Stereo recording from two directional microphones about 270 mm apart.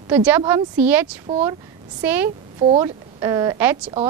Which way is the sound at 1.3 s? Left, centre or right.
Right.